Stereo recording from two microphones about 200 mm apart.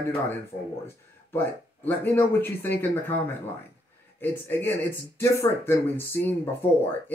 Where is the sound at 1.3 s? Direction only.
10° left (ahead or behind).